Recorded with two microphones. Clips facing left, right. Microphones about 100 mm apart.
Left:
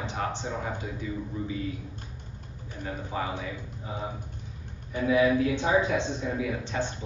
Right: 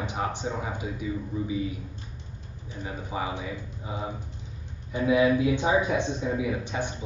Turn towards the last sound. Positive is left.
turn(degrees=-15)  # may be behind; listen again after turning